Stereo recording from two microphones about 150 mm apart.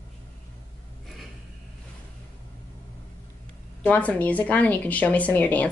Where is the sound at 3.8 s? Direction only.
10° left (ahead or behind).